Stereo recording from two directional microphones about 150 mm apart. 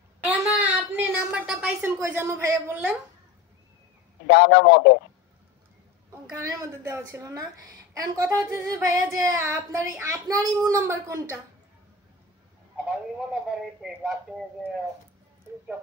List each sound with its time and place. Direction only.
0.5 s a sound: 10° right (ahead or behind)
1.8 s a woman's voice: 15° right (ahead or behind)
4.3 s a man's voice: 90° left
6.3 s a woman's voice: 20° right (ahead or behind)
12.8 s speech: 5° right (ahead or behind)